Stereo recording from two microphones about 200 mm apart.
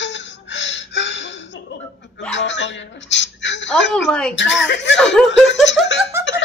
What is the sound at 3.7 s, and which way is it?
Speech, 5° left (ahead or behind).